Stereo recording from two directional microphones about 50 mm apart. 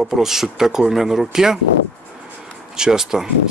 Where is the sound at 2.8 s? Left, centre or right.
Centre.